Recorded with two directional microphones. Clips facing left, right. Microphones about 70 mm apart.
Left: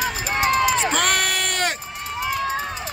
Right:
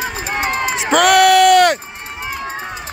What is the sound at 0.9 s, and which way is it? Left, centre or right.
Sheep, right.